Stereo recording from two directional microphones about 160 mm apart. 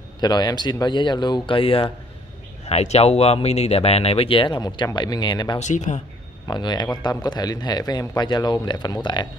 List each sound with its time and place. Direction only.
0.2 s speech: 25° left (ahead or behind)
5.6 s speech: 50° left (ahead or behind)
6.4 s speech: 25° left (ahead or behind)